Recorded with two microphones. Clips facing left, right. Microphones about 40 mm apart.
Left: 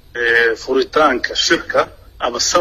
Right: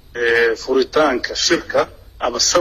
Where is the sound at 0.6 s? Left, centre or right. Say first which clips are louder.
Left 1 dB; left.